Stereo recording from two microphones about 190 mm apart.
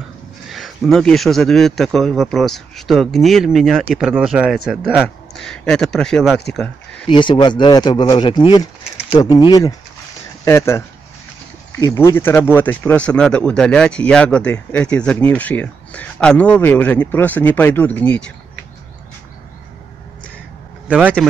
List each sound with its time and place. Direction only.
0.5 s speech: centre (ahead or behind)
7.1 s speech: 25° left (ahead or behind); by 18.3 s 5° left (ahead or behind)
21.2 s speech: centre (ahead or behind)